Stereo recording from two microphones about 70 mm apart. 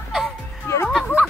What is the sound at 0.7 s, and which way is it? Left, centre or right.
Speech, left.